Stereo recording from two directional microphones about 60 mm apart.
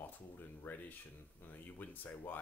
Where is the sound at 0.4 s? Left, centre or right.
Left.